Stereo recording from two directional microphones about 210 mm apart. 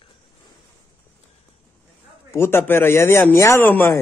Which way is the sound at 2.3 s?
10° left (ahead or behind).